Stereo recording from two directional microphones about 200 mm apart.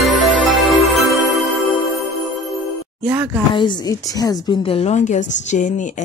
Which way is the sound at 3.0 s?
10° right (ahead or behind).